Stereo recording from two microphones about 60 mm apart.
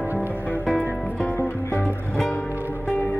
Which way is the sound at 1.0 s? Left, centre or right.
Left.